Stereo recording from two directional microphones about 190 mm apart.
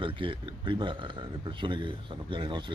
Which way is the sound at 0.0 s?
25° right (ahead or behind).